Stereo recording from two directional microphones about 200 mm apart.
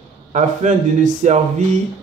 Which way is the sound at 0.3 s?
35° right (ahead or behind).